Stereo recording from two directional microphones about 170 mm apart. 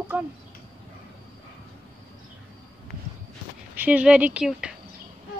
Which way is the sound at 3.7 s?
10° right (ahead or behind).